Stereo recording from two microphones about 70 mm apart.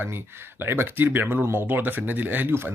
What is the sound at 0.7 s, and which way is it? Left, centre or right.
Speech, right.